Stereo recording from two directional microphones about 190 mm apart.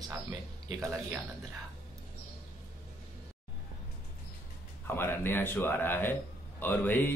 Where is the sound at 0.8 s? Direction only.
15° right (ahead or behind).